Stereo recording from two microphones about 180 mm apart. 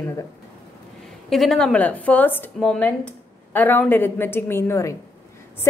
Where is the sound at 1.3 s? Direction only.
Centre (ahead or behind).